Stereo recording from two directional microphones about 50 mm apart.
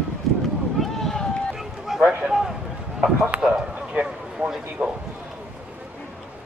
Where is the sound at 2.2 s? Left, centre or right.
Centre.